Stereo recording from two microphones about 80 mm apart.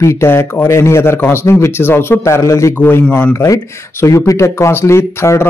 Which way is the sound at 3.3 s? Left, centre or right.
Left.